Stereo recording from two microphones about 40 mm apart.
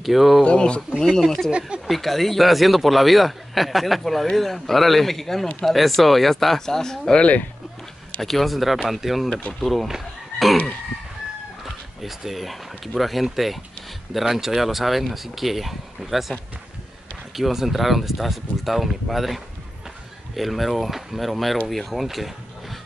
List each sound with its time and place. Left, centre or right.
0.0 s speech: centre
0.4 s speech: left
1.9 s speech: centre
7.2 s speech: left
8.2 s speech: centre
9.8 s fowl: centre
11.6 s speech: centre
17.4 s speech: centre